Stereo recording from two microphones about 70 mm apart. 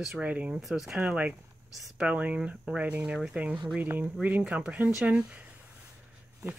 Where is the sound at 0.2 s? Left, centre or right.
Centre.